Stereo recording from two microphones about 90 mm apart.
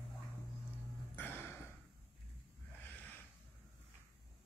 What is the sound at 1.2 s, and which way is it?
Music, 20° left (ahead or behind).